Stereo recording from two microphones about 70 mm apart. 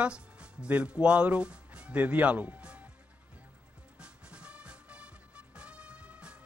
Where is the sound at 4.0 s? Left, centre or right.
Centre.